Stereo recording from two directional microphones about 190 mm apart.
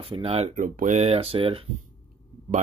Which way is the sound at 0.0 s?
30° right (ahead or behind).